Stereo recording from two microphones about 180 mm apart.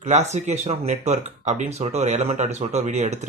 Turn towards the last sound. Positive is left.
turn(degrees=-40)  # may be behind; listen again after turning